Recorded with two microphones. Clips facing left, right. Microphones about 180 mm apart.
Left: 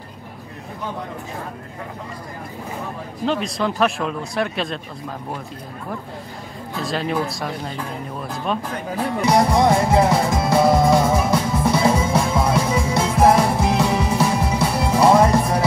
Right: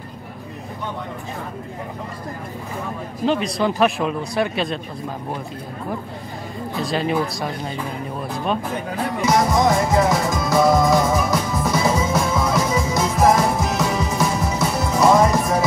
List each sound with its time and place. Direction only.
3.3 s speech: centre (ahead or behind)
6.8 s speech: centre (ahead or behind)
9.3 s music: 30° left (ahead or behind)